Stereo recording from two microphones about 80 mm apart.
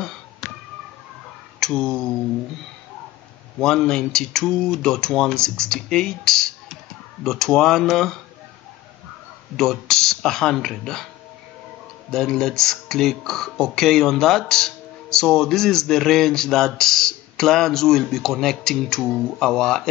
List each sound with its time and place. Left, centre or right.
0.4 s a sound: centre
1.6 s speech: centre
3.5 s speech: centre
9.6 s speech: centre
12.1 s speech: centre